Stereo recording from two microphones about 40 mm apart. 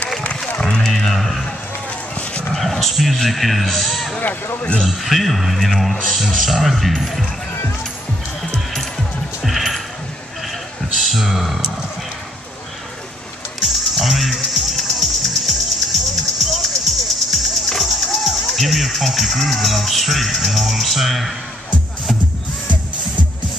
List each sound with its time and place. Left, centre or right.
0.6 s music: left
0.8 s a sound: centre
2.5 s speech: centre
9.4 s a sound: centre
11.0 s speech: centre
13.9 s music: centre